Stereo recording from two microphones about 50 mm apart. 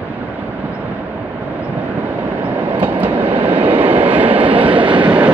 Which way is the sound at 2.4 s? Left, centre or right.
Right.